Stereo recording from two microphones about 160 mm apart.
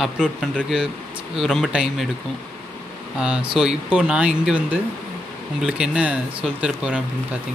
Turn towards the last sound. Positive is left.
turn(degrees=-5)  # may be behind; listen again after turning